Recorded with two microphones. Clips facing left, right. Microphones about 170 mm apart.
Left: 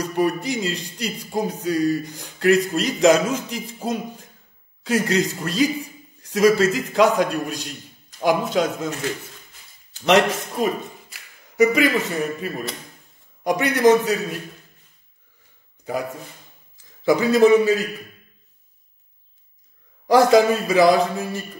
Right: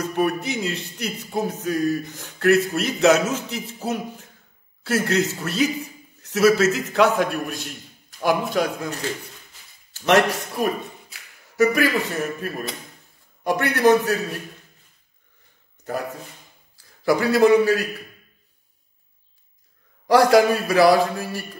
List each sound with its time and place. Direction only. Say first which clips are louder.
0.0 s a man's voice: left 1 dB; 10° left (ahead or behind)
9.9 s a man's voice: left 1 dB; 15° left (ahead or behind)
10.8 s a sound: left 1 dB; centre (ahead or behind)
11.5 s speech: left 2 dB; 20° left (ahead or behind)
15.8 s a man's voice: left 1 dB; 10° left (ahead or behind)
20.1 s a man's voice: left 1 dB; 20° left (ahead or behind)